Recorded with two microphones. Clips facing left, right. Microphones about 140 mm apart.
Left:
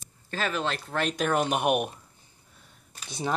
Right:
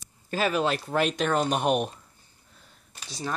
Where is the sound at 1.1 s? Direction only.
5° left (ahead or behind).